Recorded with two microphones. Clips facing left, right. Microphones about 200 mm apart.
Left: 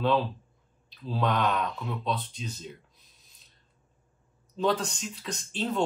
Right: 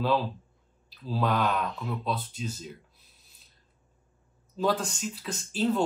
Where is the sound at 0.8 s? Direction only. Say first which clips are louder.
Even; 5° right (ahead or behind).